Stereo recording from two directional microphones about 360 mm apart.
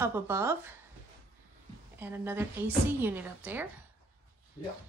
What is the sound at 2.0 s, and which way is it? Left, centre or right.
Speech, centre.